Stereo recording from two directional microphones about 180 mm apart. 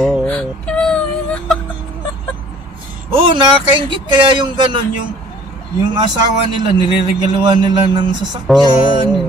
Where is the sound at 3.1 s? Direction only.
30° right (ahead or behind).